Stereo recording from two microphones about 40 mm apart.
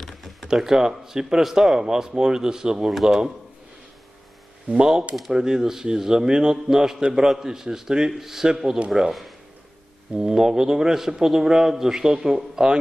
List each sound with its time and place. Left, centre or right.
0.0 s typing: centre
0.5 s a man's voice: centre
1.4 s a man's voice: centre
2.9 s speech: centre
4.7 s a man's voice: centre
10.1 s a man's voice: centre